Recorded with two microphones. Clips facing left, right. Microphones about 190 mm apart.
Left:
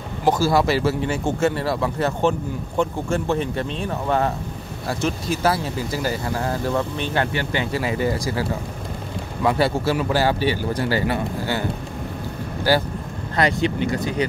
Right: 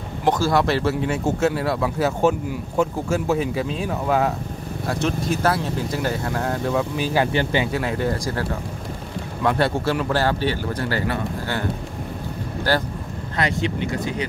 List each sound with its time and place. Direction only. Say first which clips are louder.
0.2 s speech: left 1 dB; 5° left (ahead or behind)
12.7 s speech: left 3 dB; 10° left (ahead or behind)
13.4 s speech: left 3 dB; 35° left (ahead or behind)